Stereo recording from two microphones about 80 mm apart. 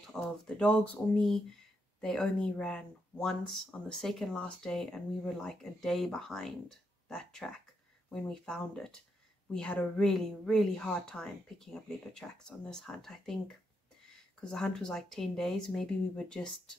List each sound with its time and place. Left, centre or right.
0.0 s a woman's voice: centre
14.4 s a woman's voice: centre